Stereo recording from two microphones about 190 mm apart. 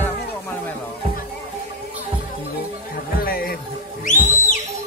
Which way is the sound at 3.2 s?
50° left (ahead or behind).